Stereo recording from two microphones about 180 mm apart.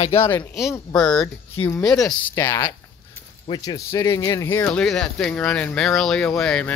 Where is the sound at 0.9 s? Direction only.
5° left (ahead or behind).